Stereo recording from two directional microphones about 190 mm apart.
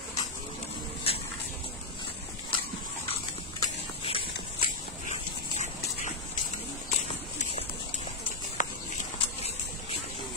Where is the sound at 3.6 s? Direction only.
30° left (ahead or behind).